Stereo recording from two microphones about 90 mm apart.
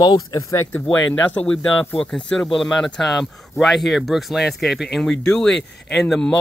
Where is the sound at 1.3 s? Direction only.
20° left (ahead or behind).